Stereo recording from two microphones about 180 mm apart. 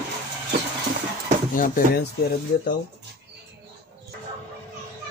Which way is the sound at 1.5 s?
50° left (ahead or behind).